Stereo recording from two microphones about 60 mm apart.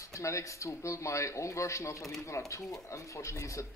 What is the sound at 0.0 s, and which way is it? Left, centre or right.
Speech, left.